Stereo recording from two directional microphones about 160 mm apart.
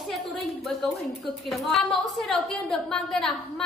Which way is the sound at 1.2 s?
Centre (ahead or behind).